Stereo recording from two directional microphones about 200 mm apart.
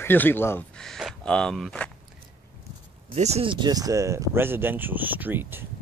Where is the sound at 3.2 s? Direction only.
30° right (ahead or behind); by 5.7 s 10° right (ahead or behind).